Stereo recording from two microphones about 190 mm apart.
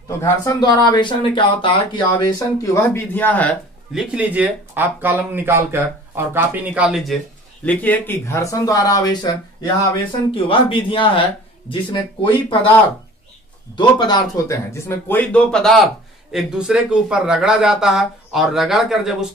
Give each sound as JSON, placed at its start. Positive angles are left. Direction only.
{"t": 0.2, "sound": "speech", "side_deg": 20}
{"t": 3.9, "sound": "speech", "side_deg": -5}
{"t": 7.6, "sound": "speech", "side_deg": 10}
{"t": 13.7, "sound": "speech", "side_deg": 25}